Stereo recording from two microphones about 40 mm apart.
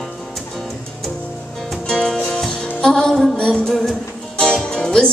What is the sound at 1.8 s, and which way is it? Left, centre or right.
Music, centre.